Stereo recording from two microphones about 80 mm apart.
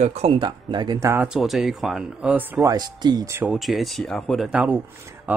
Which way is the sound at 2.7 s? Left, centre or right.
Right.